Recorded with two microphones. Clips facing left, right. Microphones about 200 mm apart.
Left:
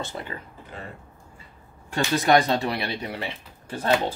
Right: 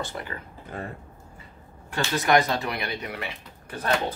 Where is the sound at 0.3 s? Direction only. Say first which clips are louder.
Left 1 dB; 25° left (ahead or behind).